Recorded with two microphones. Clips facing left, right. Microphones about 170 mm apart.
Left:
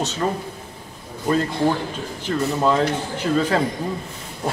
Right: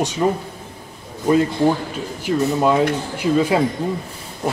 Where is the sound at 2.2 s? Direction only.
10° right (ahead or behind).